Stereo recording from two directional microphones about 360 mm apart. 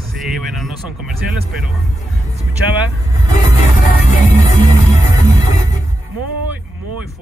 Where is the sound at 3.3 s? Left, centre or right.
Centre.